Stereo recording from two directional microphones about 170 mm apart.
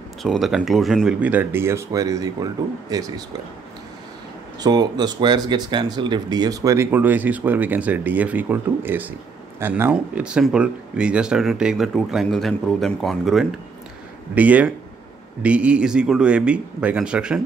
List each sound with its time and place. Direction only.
0.2 s speech: centre (ahead or behind); by 3.1 s 20° right (ahead or behind)
4.6 s speech: 25° right (ahead or behind); by 17.4 s 5° right (ahead or behind)